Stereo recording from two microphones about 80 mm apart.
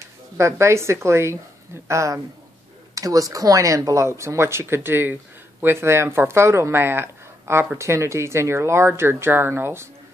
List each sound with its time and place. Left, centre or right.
0.4 s speech: right